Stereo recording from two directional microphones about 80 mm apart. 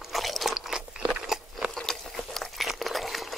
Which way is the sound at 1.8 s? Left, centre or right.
Centre.